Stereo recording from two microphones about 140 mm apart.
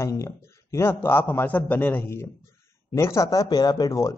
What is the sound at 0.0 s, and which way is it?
A man's voice, 20° left (ahead or behind).